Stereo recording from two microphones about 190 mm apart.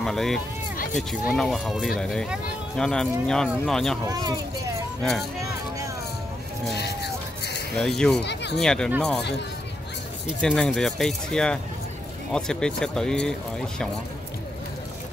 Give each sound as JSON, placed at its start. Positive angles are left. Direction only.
{"t": 0.0, "sound": "speech", "side_deg": 0}
{"t": 4.0, "sound": "speech", "side_deg": -20}
{"t": 6.7, "sound": "a sound", "side_deg": 60}
{"t": 7.7, "sound": "speech", "side_deg": 5}
{"t": 8.2, "sound": "speech", "side_deg": 60}
{"t": 8.5, "sound": "speech", "side_deg": 5}
{"t": 10.2, "sound": "speech", "side_deg": 5}